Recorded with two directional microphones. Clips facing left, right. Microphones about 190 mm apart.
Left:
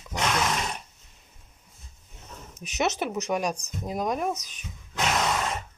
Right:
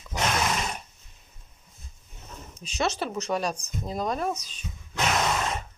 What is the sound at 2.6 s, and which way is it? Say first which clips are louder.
Speech: left 1 dB; 20° left (ahead or behind).